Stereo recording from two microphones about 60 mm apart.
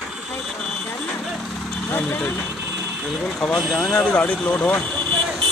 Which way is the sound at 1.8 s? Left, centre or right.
Left.